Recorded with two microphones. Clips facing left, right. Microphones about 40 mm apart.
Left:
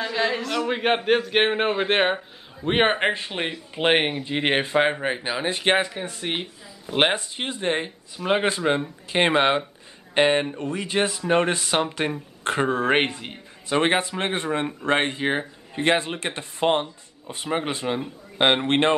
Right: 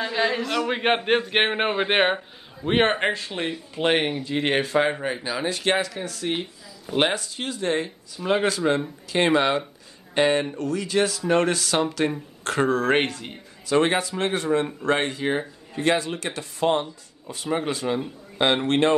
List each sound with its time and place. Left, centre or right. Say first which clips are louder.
0.0 s speech: right 1 dB; centre
2.6 s a man's voice: even; centre; by 18.9 s left